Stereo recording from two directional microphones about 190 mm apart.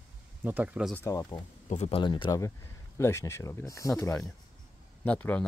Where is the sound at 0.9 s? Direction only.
15° left (ahead or behind).